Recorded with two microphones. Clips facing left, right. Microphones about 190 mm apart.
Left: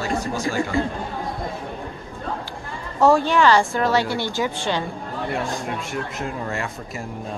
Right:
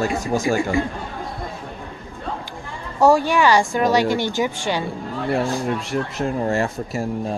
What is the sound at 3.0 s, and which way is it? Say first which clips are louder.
Speech: right 1 dB; 10° right (ahead or behind).